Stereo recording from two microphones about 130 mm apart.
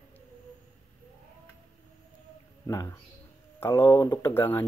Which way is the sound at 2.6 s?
25° left (ahead or behind).